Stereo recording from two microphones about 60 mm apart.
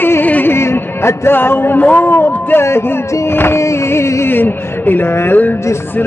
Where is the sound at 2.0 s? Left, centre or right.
Left.